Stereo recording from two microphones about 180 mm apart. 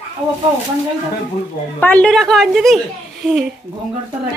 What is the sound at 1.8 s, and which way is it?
Speech, 5° left (ahead or behind).